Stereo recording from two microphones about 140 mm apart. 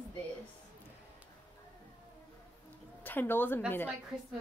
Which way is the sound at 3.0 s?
15° left (ahead or behind).